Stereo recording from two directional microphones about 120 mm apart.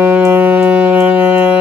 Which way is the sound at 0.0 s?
20° right (ahead or behind).